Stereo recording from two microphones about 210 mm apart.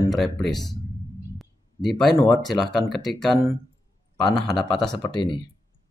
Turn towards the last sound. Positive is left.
turn(degrees=20)  # may be behind; listen again after turning